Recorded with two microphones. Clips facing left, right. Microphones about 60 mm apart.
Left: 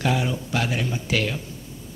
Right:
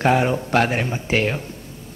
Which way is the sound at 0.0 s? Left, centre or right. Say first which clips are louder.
Right 7 dB; right.